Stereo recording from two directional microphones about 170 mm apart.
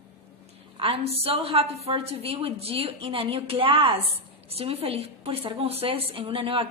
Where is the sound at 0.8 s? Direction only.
35° right (ahead or behind).